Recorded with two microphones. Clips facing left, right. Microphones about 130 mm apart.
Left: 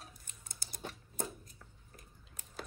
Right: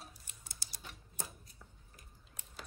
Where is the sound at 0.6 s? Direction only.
50° left (ahead or behind).